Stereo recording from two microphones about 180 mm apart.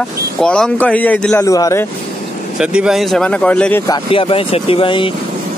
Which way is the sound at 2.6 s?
5° right (ahead or behind).